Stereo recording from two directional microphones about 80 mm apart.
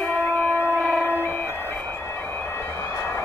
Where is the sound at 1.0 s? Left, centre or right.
Left.